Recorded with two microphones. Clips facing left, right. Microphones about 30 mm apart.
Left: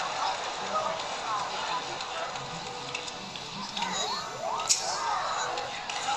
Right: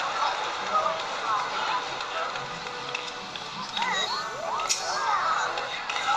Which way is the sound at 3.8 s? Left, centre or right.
Right.